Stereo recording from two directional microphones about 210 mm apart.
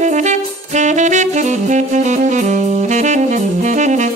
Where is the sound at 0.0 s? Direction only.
35° right (ahead or behind).